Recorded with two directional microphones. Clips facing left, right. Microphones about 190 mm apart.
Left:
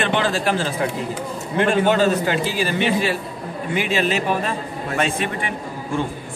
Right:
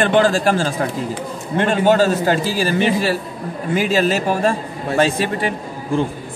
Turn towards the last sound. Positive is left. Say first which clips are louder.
# right 4 dB
turn(degrees=-35)  # may be behind; listen again after turning